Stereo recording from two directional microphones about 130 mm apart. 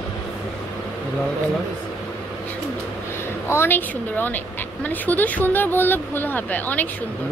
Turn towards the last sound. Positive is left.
turn(degrees=15)  # may be behind; listen again after turning